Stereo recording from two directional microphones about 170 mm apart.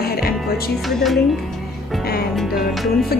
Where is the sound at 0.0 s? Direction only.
65° left (ahead or behind).